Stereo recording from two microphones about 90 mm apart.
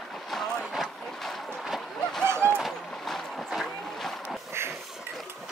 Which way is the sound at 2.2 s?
25° right (ahead or behind).